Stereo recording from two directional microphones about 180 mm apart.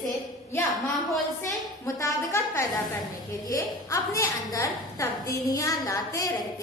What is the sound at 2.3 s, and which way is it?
A woman's voice, 15° left (ahead or behind).